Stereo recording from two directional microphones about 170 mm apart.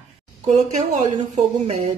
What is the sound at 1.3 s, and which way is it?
Speech, 40° right (ahead or behind).